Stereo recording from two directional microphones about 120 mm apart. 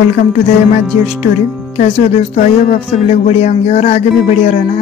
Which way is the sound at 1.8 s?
70° left (ahead or behind).